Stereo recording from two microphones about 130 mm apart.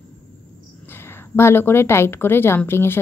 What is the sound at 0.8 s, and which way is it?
A woman's voice, 15° left (ahead or behind).